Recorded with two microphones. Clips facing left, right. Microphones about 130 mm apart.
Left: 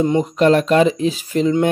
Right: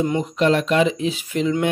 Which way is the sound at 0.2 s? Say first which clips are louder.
Left 4 dB; 45° left (ahead or behind).